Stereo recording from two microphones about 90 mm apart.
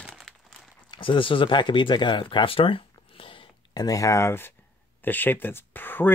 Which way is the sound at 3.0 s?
85° left.